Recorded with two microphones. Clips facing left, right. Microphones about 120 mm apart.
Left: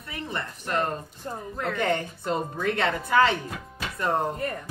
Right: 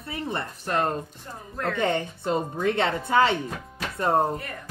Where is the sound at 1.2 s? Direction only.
40° left (ahead or behind).